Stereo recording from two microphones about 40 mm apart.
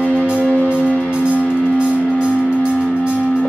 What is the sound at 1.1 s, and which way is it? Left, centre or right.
Music, right.